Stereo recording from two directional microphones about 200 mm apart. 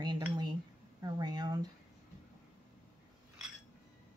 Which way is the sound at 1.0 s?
20° right (ahead or behind).